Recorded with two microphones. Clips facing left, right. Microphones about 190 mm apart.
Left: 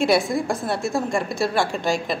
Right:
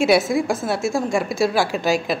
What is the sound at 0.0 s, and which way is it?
Speech, centre (ahead or behind).